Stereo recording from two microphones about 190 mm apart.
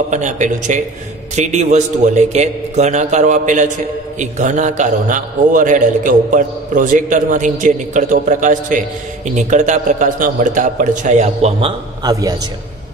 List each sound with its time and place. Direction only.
0.1 s a man's voice: 40° right (ahead or behind)
12.0 s a man's voice: 20° right (ahead or behind)